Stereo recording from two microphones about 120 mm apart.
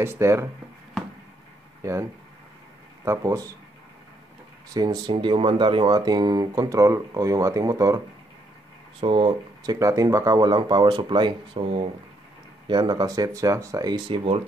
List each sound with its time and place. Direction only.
0.0 s speech: 20° right (ahead or behind)
1.8 s speech: 25° right (ahead or behind)
3.1 s speech: 25° right (ahead or behind)
4.7 s speech: 35° right (ahead or behind)
5.1 s speech: 45° right (ahead or behind)
5.9 s speech: 35° right (ahead or behind)
9.0 s speech: 50° right (ahead or behind)
9.6 s speech: 30° right (ahead or behind); by 11.9 s 50° right (ahead or behind)
12.6 s speech: 40° right (ahead or behind)